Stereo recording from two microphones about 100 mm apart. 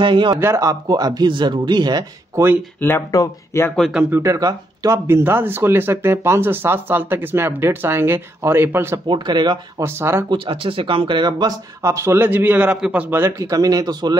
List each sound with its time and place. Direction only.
0.0 s speech: 55° right (ahead or behind)
0.4 s speech: 30° right (ahead or behind)
3.1 s speech: 35° left (ahead or behind)
4.1 s speech: 30° right (ahead or behind)
4.9 s speech: 25° right (ahead or behind)
9.0 s speech: 50° right (ahead or behind)
9.8 s speech: 25° right (ahead or behind)
10.3 s speech: 60° right (ahead or behind)
11.8 s speech: 30° right (ahead or behind); by 13.2 s 15° right (ahead or behind)
13.2 s speech: 35° right (ahead or behind)